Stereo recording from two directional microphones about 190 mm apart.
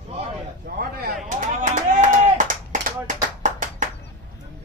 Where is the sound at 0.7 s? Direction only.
50° right (ahead or behind).